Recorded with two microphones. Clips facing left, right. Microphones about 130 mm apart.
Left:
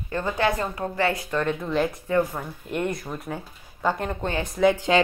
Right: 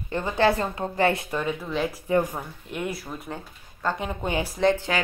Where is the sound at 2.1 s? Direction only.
15° right (ahead or behind).